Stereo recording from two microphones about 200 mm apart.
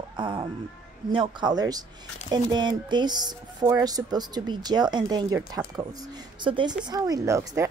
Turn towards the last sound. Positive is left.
turn(degrees=-15)  # may be behind; listen again after turning